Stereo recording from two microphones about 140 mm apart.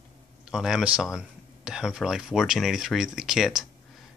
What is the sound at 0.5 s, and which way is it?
Speech, 5° right (ahead or behind).